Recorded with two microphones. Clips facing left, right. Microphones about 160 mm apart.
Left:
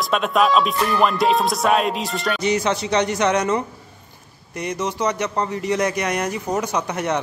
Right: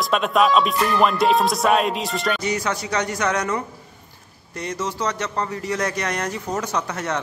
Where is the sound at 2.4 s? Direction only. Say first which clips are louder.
Left 4 dB; 20° left (ahead or behind).